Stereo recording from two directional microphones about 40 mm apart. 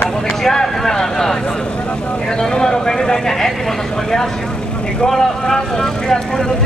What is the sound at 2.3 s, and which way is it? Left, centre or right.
Vehicle, centre.